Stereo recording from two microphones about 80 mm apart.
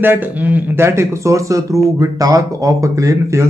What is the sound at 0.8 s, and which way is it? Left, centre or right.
Speech, right.